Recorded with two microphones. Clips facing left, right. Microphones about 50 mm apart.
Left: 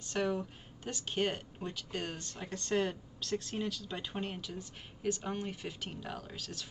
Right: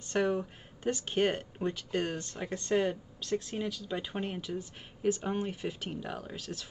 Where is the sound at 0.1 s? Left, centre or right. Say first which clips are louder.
Right 4 dB; centre.